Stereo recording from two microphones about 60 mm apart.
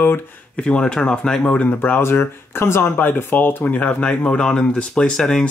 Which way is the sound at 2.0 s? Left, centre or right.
Left.